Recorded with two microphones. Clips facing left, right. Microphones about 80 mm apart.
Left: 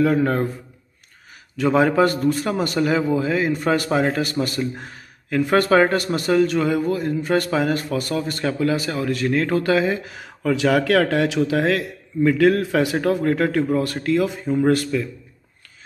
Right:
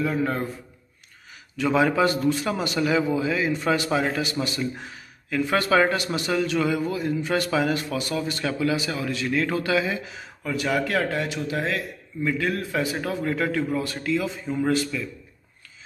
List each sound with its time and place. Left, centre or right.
0.0 s speech: left
1.6 s speech: left